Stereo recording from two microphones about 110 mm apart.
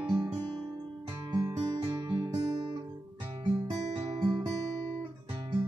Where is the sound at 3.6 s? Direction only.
30° right (ahead or behind).